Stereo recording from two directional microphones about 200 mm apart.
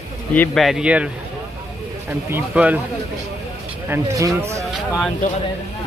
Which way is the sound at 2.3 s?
5° right (ahead or behind).